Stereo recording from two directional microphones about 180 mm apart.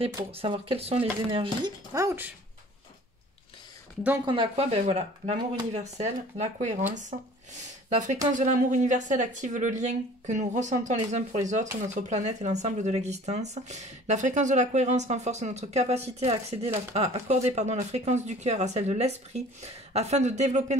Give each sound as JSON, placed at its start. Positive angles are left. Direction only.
{"t": 0.0, "sound": "speech", "side_deg": -30}
{"t": 2.0, "sound": "speech", "side_deg": -15}
{"t": 4.3, "sound": "speech", "side_deg": -30}
{"t": 8.4, "sound": "speech", "side_deg": -45}